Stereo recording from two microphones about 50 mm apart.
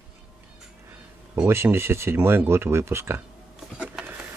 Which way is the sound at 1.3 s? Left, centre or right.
Right.